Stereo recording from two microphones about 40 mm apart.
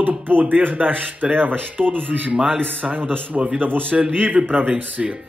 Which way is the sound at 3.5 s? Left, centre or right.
Right.